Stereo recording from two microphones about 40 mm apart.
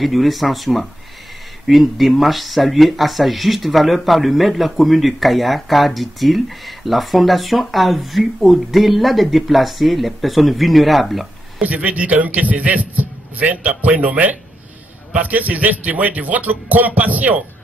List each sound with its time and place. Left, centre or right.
0.0 s speech: centre
11.6 s a man's voice: right